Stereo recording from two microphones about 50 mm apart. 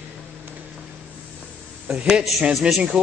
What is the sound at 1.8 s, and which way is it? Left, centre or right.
A man's voice, centre.